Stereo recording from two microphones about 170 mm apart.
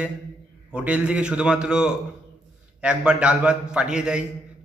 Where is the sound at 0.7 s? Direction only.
5° right (ahead or behind).